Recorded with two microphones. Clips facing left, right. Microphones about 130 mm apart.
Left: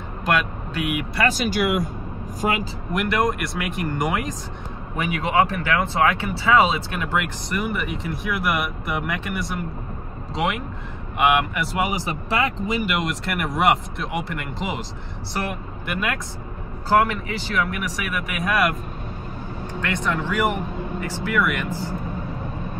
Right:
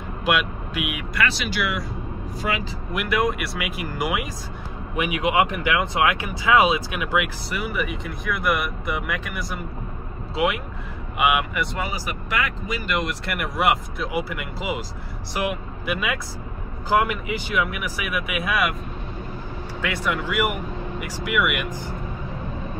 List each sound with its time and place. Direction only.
0.2 s speech: 5° right (ahead or behind)
1.2 s speech: 45° left (ahead or behind)
2.9 s speech: 5° right (ahead or behind)
11.8 s speech: 20° left (ahead or behind)
12.8 s speech: centre (ahead or behind)
19.8 s speech: 10° right (ahead or behind)